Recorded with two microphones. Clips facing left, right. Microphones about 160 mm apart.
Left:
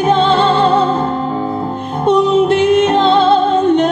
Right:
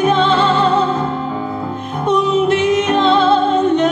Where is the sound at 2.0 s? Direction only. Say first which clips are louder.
Left 4 dB; 30° left (ahead or behind).